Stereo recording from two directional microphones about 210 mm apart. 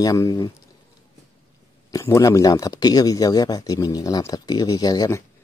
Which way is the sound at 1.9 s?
15° left (ahead or behind).